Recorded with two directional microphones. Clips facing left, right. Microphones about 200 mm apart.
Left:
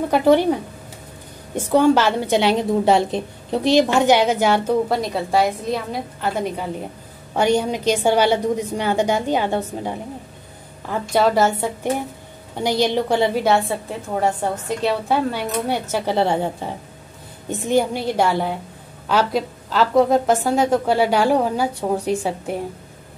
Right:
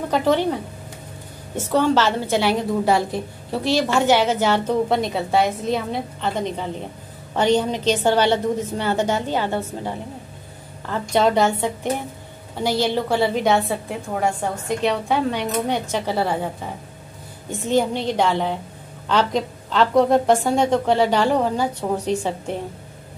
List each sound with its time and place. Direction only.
0.1 s a woman's voice: 10° left (ahead or behind)
4.8 s a woman's voice: centre (ahead or behind); by 9.9 s 15° left (ahead or behind)
10.9 s a woman's voice: 5° left (ahead or behind)
13.4 s a woman's voice: centre (ahead or behind)
17.5 s a woman's voice: 15° left (ahead or behind)